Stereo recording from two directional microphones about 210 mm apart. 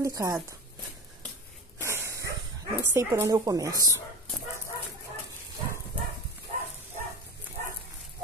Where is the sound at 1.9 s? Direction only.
15° right (ahead or behind).